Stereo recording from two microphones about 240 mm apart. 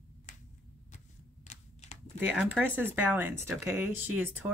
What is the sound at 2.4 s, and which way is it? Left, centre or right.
Speech, centre.